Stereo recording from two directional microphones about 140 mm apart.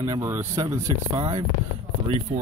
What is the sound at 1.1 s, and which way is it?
Speech, 35° right (ahead or behind).